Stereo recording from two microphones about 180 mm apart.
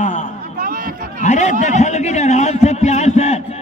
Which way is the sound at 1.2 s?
40° left (ahead or behind).